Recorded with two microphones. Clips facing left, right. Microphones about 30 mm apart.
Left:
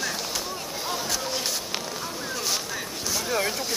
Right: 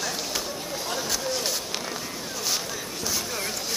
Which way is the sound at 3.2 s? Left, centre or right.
Centre.